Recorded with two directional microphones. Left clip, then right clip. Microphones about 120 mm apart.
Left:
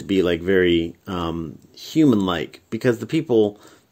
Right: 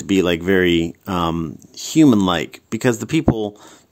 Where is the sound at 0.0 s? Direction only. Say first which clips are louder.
Right 2 dB; 35° right (ahead or behind).